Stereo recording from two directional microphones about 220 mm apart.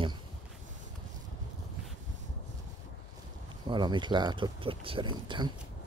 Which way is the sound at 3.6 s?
20° right (ahead or behind).